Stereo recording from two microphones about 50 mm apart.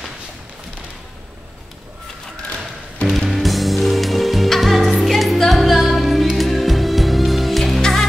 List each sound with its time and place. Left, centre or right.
3.1 s music: centre